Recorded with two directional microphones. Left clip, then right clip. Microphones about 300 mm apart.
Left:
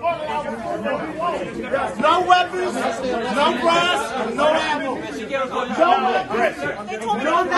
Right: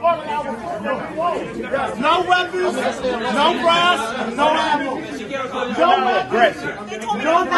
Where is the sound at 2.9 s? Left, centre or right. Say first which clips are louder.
Right 2 dB; right.